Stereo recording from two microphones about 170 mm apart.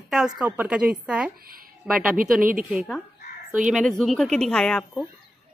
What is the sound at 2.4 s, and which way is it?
Speech, 55° right (ahead or behind).